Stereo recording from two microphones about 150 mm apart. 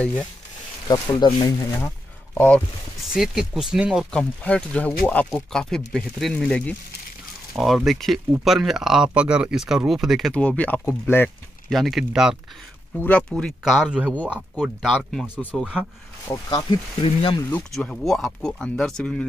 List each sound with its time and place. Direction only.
0.0 s speech: 10° left (ahead or behind)
0.8 s speech: 30° left (ahead or behind)
2.3 s speech: 10° left (ahead or behind)
3.1 s speech: 5° right (ahead or behind); by 11.3 s 15° left (ahead or behind)
11.7 s speech: centre (ahead or behind)
12.9 s speech: 10° left (ahead or behind); by 15.8 s 5° right (ahead or behind)
16.3 s speech: 20° left (ahead or behind)
17.0 s speech: 35° left (ahead or behind)
17.7 s speech: centre (ahead or behind)